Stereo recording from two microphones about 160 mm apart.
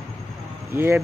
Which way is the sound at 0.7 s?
15° right (ahead or behind).